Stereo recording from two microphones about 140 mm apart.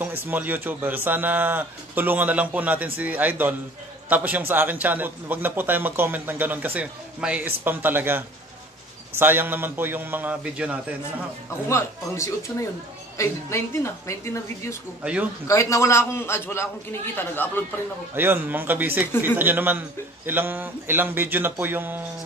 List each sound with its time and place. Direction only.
0.0 s a man's voice: 15° right (ahead or behind)
9.2 s a man's voice: 15° right (ahead or behind)
11.7 s a man's voice: 20° left (ahead or behind)
18.1 s a man's voice: 15° right (ahead or behind)